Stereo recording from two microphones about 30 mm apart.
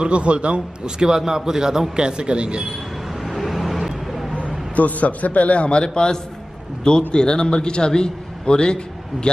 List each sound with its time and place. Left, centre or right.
0.0 s a man's voice: right
0.8 s a man's voice: right
3.3 s vehicle: centre
4.4 s a sound: left
4.8 s a man's voice: left